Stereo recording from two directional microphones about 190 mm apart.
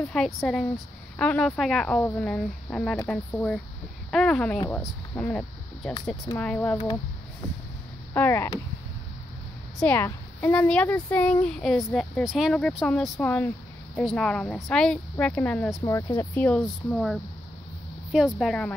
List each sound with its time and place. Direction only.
0.1 s speech: centre (ahead or behind)
8.1 s speech: 10° left (ahead or behind)
9.8 s speech: 10° left (ahead or behind)
15.8 s speech: 20° left (ahead or behind); by 18.7 s centre (ahead or behind)